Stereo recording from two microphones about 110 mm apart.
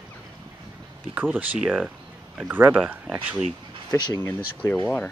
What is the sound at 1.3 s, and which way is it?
Speech, 10° right (ahead or behind).